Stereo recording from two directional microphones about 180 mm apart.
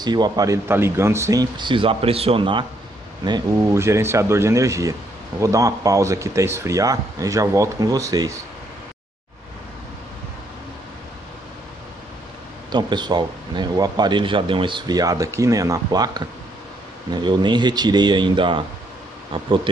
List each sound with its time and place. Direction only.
0.0 s a man's voice: 25° right (ahead or behind)
12.7 s a man's voice: 25° right (ahead or behind)